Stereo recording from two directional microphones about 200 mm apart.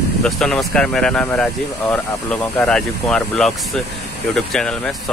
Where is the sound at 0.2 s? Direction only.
Centre (ahead or behind).